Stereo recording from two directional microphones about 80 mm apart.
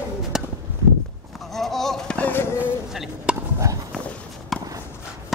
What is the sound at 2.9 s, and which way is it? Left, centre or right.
Chop, centre.